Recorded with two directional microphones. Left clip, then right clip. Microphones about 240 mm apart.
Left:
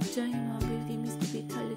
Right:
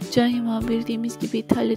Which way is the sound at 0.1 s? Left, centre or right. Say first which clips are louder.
Right 13 dB; right.